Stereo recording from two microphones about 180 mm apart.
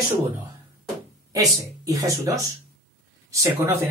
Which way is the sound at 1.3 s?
20° right (ahead or behind).